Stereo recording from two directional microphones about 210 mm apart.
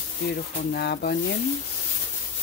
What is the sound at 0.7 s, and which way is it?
Speech, 45° left (ahead or behind).